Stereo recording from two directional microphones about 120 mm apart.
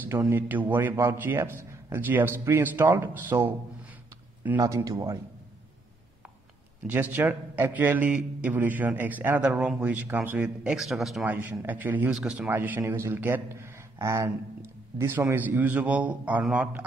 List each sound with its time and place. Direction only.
0.2 s a man's voice: 15° right (ahead or behind)
4.6 s speech: 25° right (ahead or behind)
6.9 s a man's voice: 15° right (ahead or behind)
11.2 s a man's voice: 15° right (ahead or behind)
12.4 s a man's voice: 15° right (ahead or behind)